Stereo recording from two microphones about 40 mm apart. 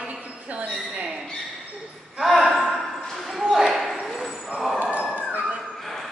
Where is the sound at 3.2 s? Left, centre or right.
Centre.